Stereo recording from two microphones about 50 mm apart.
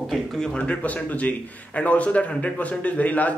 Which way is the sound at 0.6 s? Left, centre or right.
Left.